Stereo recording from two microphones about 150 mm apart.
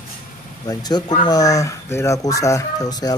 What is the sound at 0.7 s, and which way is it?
Speech, 25° left (ahead or behind).